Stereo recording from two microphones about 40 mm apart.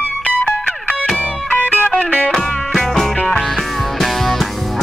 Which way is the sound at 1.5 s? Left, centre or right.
Left.